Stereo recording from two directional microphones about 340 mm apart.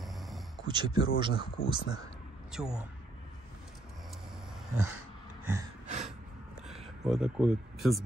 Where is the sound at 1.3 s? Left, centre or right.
Left.